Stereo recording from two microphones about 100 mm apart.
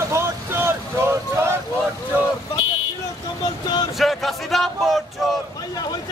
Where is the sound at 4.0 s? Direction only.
Centre (ahead or behind).